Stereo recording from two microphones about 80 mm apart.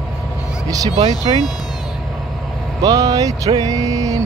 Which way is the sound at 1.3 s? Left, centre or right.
Right.